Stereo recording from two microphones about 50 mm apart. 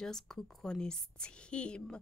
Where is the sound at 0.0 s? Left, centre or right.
Centre.